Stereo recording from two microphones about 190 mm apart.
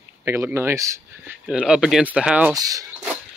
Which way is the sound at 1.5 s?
5° right (ahead or behind).